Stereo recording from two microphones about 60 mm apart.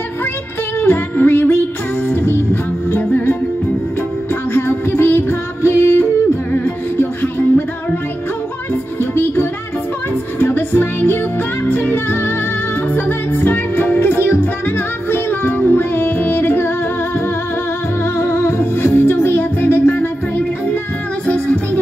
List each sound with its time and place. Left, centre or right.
0.7 s music: left
4.6 s music: left
6.5 s music: left
9.1 s music: left
18.1 s music: left